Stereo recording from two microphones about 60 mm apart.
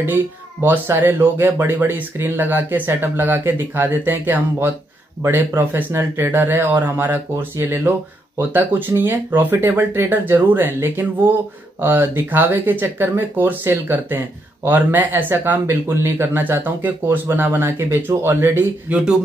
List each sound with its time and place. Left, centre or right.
0.0 s speech: right
8.4 s speech: right
18.9 s speech: centre